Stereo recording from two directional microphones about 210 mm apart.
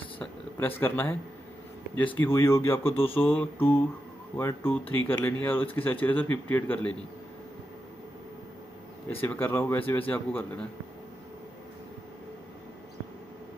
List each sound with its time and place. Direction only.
0.2 s a sound: 10° left (ahead or behind)
2.1 s speech: 10° left (ahead or behind)
2.9 s speech: 25° left (ahead or behind)
3.2 s speech: 10° left (ahead or behind)
9.1 s speech: 10° left (ahead or behind)